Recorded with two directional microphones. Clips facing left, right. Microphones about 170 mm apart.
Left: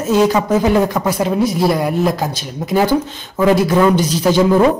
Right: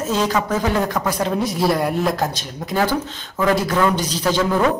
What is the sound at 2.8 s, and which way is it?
Speech, 10° left (ahead or behind).